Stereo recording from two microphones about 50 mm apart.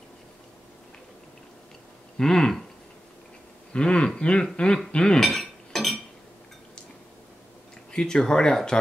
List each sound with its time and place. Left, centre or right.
2.1 s a sound: centre
3.7 s speech: centre
5.2 s chink: centre
7.9 s speech: centre